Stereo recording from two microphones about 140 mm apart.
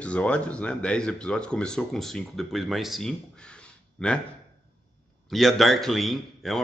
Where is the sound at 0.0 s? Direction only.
10° left (ahead or behind).